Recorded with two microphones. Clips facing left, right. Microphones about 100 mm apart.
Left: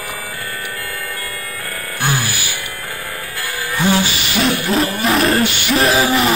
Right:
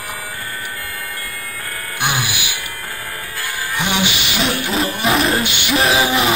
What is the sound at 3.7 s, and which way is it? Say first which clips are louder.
Music: left 4 dB; 15° right (ahead or behind).